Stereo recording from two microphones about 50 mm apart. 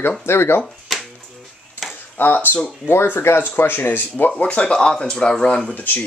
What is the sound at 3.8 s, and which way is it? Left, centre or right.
Speech, left.